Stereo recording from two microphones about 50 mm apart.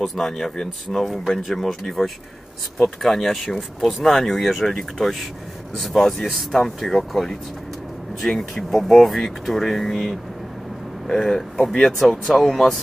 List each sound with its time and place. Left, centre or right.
0.0 s speech: centre